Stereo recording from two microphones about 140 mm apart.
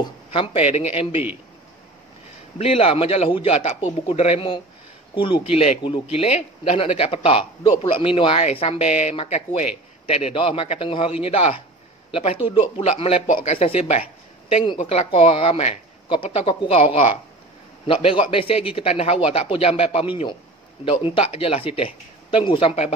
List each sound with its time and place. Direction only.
0.3 s speech: 45° left (ahead or behind)
2.6 s a man's voice: 45° left (ahead or behind)
9.1 s a man's voice: 40° left (ahead or behind)
12.8 s a man's voice: 50° left (ahead or behind)